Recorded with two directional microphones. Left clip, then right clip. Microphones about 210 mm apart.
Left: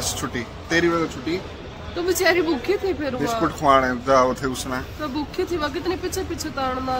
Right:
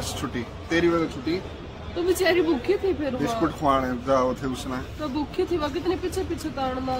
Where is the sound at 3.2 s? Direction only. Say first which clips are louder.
Left 4 dB; 5° left (ahead or behind).